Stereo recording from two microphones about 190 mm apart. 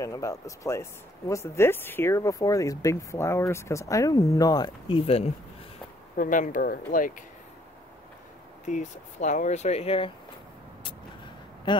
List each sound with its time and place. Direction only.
0.0 s speech: 15° left (ahead or behind)
6.1 s speech: 45° left (ahead or behind)
8.6 s speech: 40° left (ahead or behind)